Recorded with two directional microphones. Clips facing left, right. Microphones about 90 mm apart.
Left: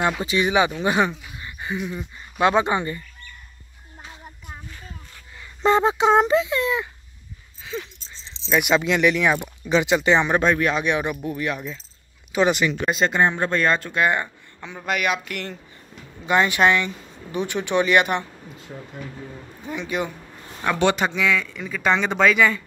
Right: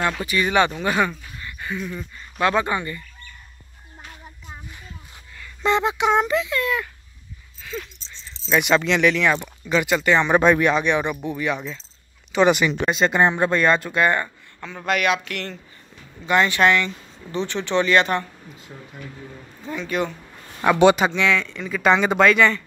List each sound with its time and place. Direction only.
0.0 s speech: 20° left (ahead or behind)
5.4 s speech: 30° left (ahead or behind)
7.6 s a sound: 20° left (ahead or behind)
8.5 s speech: 5° left (ahead or behind)
9.7 s speech: 20° left (ahead or behind)
10.3 s speech: centre (ahead or behind)
13.1 s speech: 15° right (ahead or behind)
13.5 s speech: 5° right (ahead or behind)
14.0 s speech: 10° left (ahead or behind)
19.6 s speech: 15° left (ahead or behind)
20.6 s speech: 10° right (ahead or behind)
21.1 s speech: 5° left (ahead or behind)